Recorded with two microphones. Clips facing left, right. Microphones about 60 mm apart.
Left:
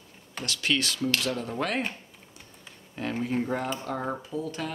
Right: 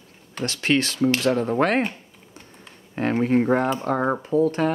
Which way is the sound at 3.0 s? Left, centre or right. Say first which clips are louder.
Right 9 dB; right.